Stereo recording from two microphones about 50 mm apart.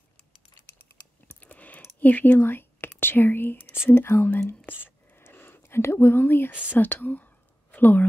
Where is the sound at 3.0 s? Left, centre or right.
Left.